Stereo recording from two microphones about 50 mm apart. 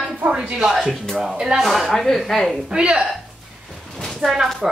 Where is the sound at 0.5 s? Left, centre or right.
Centre.